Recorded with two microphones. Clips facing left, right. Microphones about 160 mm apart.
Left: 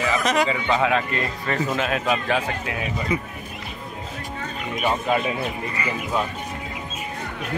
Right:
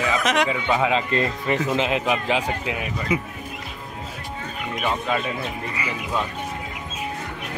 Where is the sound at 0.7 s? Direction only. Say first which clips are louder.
Even; 15° right (ahead or behind).